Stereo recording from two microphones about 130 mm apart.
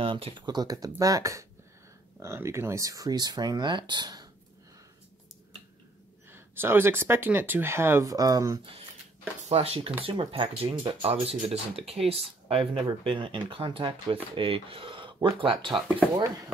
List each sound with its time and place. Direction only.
0.0 s speech: 45° right (ahead or behind)
6.3 s speech: 15° right (ahead or behind)
9.4 s speech: 50° right (ahead or behind)